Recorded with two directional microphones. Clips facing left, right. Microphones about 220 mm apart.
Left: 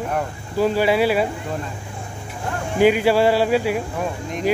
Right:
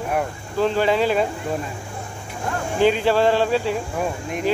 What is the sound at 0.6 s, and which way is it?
Speech, 10° left (ahead or behind).